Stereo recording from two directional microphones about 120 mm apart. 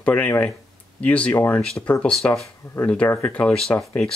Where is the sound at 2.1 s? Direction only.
5° left (ahead or behind).